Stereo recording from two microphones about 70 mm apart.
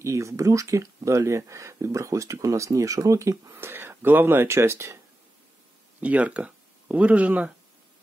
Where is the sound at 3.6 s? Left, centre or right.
Right.